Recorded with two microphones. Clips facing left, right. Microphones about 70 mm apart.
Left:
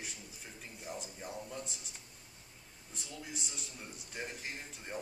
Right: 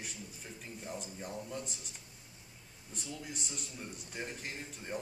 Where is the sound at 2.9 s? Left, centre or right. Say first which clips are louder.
Right 2 dB; centre.